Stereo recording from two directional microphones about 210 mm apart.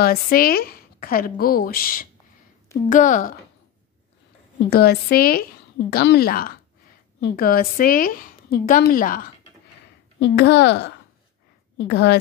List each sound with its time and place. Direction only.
0.0 s a woman's voice: 45° left (ahead or behind)
4.6 s a woman's voice: 50° left (ahead or behind)
10.1 s a woman's voice: 55° left (ahead or behind)